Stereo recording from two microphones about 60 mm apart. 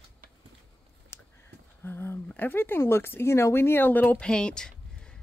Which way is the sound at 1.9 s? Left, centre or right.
Left.